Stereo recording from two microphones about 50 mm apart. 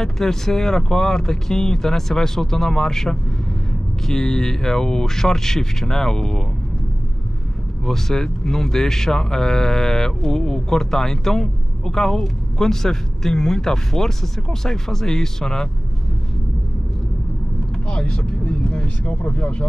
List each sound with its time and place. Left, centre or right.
0.0 s speech: centre
7.8 s speech: centre
17.8 s speech: left